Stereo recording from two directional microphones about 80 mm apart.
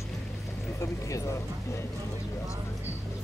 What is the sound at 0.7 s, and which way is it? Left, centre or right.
Speech, left.